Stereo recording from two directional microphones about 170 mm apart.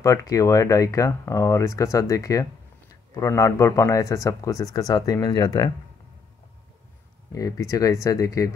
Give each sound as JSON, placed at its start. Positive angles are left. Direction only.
{"t": 0.0, "sound": "speech", "side_deg": 20}
{"t": 7.3, "sound": "speech", "side_deg": 20}